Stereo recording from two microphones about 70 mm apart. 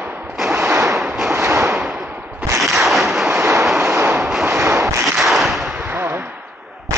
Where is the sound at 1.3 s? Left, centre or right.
Right.